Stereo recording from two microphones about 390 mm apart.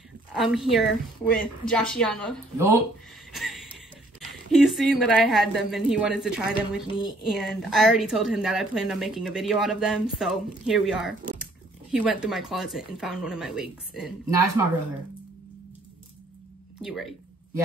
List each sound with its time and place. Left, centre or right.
0.3 s a woman's voice: centre
3.3 s a sound: centre
4.5 s a woman's voice: centre
16.8 s a woman's voice: centre